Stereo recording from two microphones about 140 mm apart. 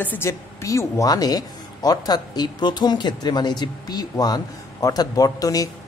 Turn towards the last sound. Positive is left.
turn(degrees=25)  # may be behind; listen again after turning